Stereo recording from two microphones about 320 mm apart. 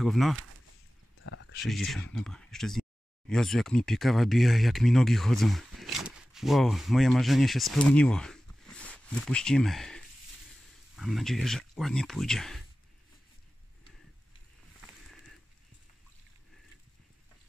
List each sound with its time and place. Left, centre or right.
0.0 s speech: centre
1.2 s a sound: left
1.6 s speech: centre